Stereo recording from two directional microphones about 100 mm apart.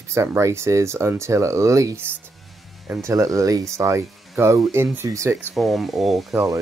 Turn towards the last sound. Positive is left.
turn(degrees=-30)  # may be behind; listen again after turning